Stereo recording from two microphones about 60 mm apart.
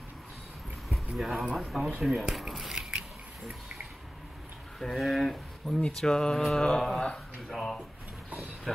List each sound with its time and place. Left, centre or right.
0.8 s speech: centre
2.7 s a sound: centre
4.7 s speech: centre